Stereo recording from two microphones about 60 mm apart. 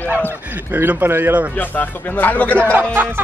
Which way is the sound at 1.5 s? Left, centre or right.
Left.